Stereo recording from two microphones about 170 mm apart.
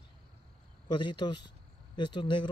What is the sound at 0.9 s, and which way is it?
Speech, 25° left (ahead or behind).